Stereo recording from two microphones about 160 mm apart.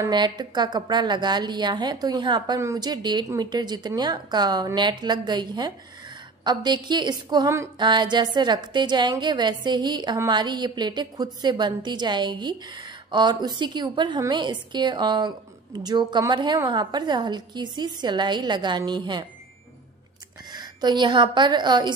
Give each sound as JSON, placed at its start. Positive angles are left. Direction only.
{"t": 0.0, "sound": "a woman's voice", "side_deg": -25}
{"t": 20.5, "sound": "a woman's voice", "side_deg": -25}